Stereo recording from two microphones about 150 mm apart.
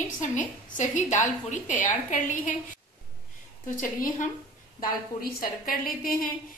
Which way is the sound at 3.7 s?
65° left (ahead or behind).